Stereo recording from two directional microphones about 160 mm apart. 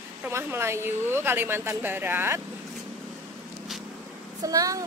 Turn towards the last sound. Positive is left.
turn(degrees=-20)  # may be behind; listen again after turning